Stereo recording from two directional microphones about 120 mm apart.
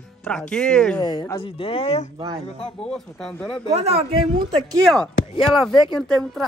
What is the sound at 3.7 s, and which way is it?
Speech, 60° right (ahead or behind).